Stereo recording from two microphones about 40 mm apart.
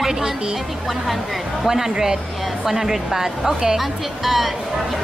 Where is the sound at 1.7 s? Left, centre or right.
Centre.